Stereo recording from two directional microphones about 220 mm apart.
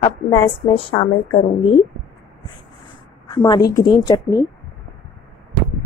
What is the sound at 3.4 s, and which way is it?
Speech, 15° left (ahead or behind).